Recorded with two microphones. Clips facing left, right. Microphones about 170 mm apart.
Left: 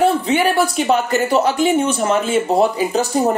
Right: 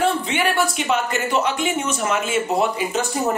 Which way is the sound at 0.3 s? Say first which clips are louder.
Left 5 dB; 35° left (ahead or behind).